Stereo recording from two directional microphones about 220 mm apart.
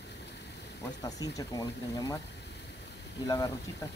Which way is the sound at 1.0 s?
15° left (ahead or behind).